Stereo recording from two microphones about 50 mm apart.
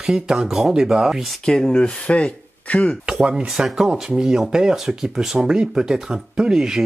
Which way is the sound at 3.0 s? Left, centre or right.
Centre.